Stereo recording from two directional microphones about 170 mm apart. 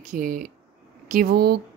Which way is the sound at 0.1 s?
55° right (ahead or behind).